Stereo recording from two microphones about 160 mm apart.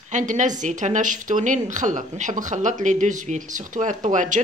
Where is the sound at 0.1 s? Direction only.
50° right (ahead or behind).